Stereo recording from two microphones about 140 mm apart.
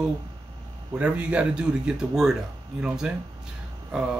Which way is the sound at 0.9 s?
10° right (ahead or behind).